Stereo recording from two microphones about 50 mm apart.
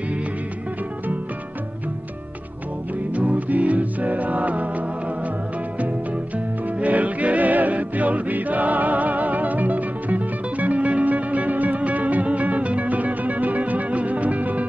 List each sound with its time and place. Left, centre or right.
3.1 s music: right